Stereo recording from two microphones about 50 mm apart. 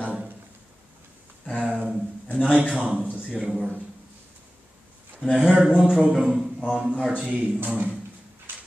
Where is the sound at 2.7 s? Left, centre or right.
Right.